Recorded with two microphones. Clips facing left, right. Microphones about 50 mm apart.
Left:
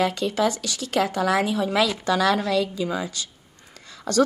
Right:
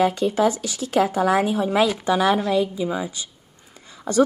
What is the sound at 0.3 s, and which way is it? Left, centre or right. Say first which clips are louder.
A woman's voice: right 3 dB; centre.